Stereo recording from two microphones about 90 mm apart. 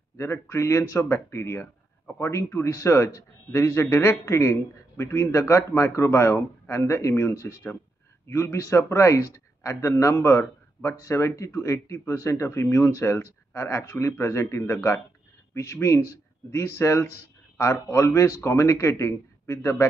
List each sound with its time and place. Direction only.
0.2 s a man's voice: 30° left (ahead or behind)